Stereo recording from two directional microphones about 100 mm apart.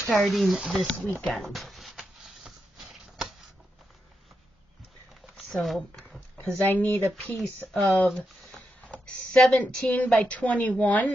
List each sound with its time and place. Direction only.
0.2 s speech: centre (ahead or behind)
0.9 s speech: 15° left (ahead or behind)
1.2 s a sound: centre (ahead or behind)
5.2 s a sound: centre (ahead or behind)
6.4 s speech: 15° left (ahead or behind)
7.1 s speech: 5° left (ahead or behind)